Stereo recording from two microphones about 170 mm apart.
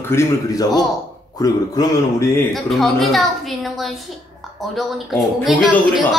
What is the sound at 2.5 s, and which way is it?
A woman's voice, centre (ahead or behind).